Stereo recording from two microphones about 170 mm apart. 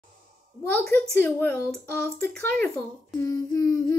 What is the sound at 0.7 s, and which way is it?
Humming, 10° left (ahead or behind).